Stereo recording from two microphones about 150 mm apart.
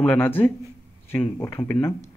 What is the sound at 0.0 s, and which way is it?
Speech, 10° left (ahead or behind).